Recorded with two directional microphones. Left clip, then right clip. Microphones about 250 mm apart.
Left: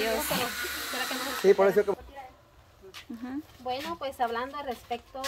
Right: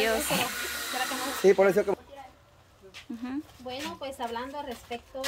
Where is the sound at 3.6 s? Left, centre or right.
Centre.